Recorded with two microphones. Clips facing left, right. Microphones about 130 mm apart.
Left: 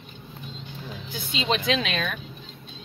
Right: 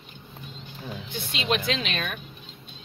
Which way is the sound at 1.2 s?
Centre (ahead or behind).